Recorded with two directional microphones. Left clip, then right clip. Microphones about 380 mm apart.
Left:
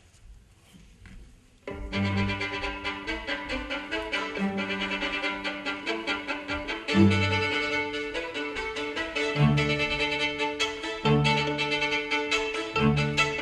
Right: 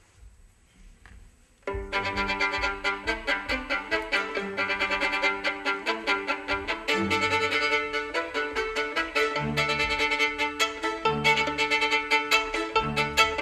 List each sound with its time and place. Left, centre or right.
1.9 s music: right